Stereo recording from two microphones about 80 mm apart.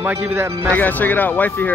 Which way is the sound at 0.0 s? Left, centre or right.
Right.